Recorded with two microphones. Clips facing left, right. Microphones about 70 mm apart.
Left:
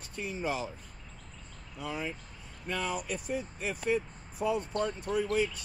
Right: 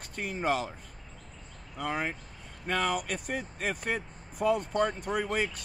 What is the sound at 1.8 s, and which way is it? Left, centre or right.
Speech, right.